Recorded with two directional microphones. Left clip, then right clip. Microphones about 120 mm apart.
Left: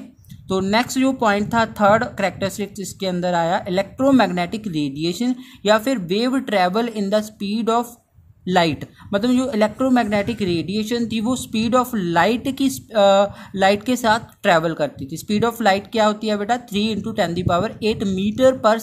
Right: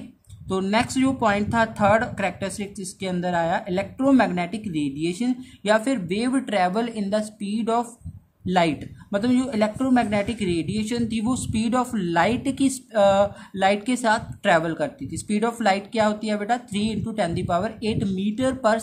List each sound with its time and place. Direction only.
0.5 s speech: 45° left (ahead or behind)